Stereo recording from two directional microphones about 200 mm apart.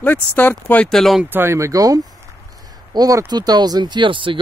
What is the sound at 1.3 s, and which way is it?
Speech, 10° right (ahead or behind).